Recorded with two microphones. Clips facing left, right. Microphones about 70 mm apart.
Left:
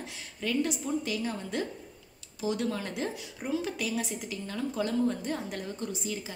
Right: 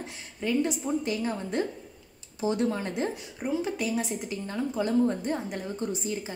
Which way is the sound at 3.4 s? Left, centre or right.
Centre.